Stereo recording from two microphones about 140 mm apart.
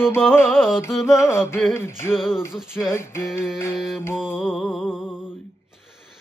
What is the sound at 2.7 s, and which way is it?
Music, 20° left (ahead or behind).